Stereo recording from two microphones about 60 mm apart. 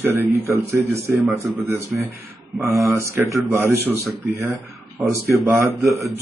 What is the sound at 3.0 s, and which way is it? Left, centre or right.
Speech, right.